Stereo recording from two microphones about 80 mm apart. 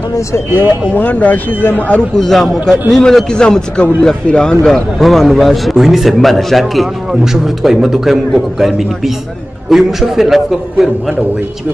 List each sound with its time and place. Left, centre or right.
0.6 s a man's voice: left
2.1 s a man's voice: centre